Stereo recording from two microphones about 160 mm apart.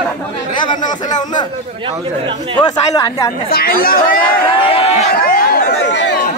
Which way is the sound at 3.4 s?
65° left (ahead or behind).